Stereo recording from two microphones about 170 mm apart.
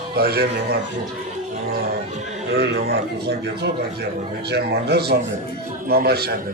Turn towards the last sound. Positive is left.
turn(degrees=-65)  # may be behind; listen again after turning